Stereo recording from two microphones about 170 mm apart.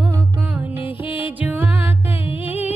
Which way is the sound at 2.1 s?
35° left (ahead or behind).